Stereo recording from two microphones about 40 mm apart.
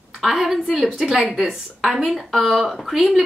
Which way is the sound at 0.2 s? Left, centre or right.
Centre.